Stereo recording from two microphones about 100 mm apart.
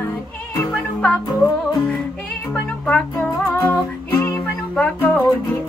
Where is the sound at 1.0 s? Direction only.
15° left (ahead or behind).